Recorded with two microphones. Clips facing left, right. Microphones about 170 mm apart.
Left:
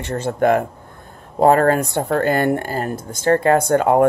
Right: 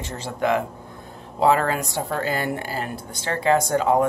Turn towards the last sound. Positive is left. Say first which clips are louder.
# left 4 dB
turn(degrees=55)  # may be behind; listen again after turning